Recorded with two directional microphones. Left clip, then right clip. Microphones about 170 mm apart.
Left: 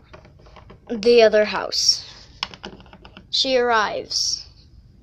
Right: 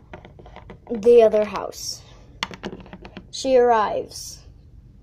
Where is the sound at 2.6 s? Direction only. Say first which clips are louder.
Right 3 dB; 25° right (ahead or behind).